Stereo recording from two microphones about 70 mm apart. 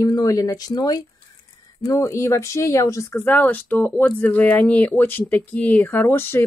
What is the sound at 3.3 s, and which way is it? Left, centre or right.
Speech, left.